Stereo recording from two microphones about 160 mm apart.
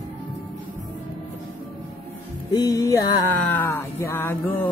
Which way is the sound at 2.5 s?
20° left (ahead or behind).